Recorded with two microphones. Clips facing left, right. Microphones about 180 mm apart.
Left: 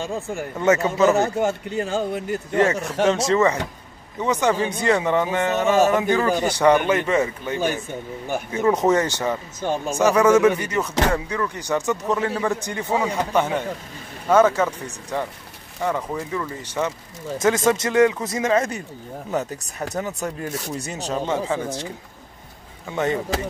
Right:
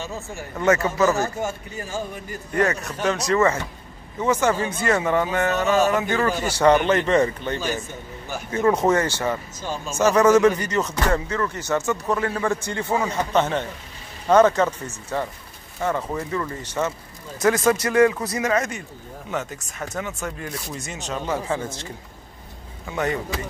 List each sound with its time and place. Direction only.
0.1 s speech: 55° left (ahead or behind)
0.6 s speech: 20° left (ahead or behind)
1.4 s speech: 70° left (ahead or behind)
2.5 s speech: 25° left (ahead or behind)
19.3 s speech: 35° left (ahead or behind)
22.9 s speech: 25° left (ahead or behind)